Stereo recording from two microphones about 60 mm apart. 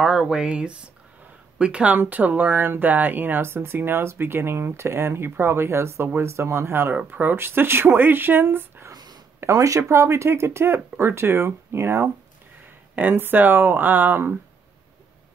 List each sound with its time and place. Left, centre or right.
0.0 s speech: centre; by 8.8 s right
9.4 s speech: right
12.9 s speech: right